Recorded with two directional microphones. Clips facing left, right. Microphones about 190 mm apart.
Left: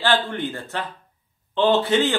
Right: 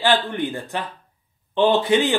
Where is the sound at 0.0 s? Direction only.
15° right (ahead or behind).